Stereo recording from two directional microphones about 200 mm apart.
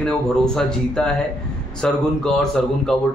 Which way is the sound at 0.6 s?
5° left (ahead or behind).